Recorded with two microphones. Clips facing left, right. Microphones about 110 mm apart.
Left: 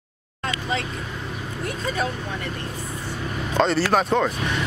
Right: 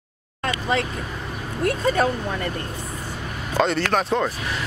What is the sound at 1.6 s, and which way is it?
Vehicle, 60° right (ahead or behind).